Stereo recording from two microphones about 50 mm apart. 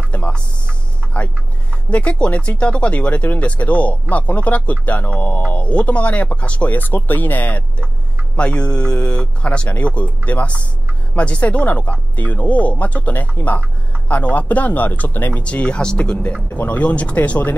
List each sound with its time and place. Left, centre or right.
0.1 s music: left
1.9 s speech: left
8.4 s speech: left
15.4 s speech: left
16.5 s speech: left